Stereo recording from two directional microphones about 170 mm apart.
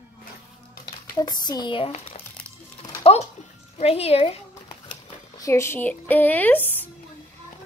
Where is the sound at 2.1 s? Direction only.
40° left (ahead or behind).